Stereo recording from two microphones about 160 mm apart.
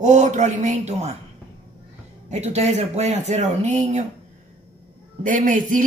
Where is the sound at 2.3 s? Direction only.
45° right (ahead or behind).